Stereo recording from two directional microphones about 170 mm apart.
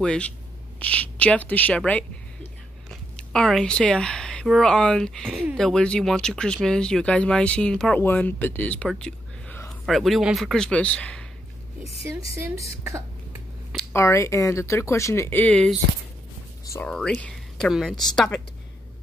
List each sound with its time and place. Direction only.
0.0 s speech: 5° left (ahead or behind)
13.9 s speech: 15° left (ahead or behind)
16.8 s speech: 5° left (ahead or behind)